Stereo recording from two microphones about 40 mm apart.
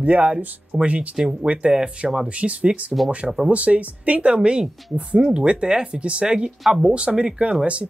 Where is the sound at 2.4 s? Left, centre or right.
Right.